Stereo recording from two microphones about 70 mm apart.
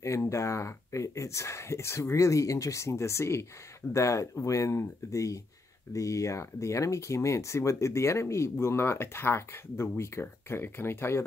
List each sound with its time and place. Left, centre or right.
0.0 s speech: left